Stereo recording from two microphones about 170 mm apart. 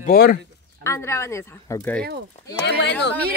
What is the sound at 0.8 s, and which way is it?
Speech, 15° left (ahead or behind).